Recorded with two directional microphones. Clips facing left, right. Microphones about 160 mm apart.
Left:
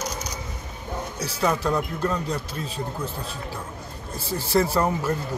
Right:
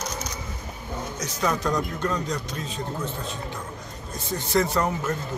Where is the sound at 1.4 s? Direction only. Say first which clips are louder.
Left 2 dB; 10° left (ahead or behind).